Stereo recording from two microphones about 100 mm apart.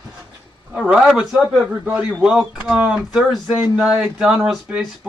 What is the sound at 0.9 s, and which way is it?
Speech, 5° right (ahead or behind).